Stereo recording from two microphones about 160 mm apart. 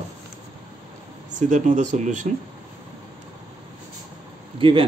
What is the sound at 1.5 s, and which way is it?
Speech, 50° right (ahead or behind).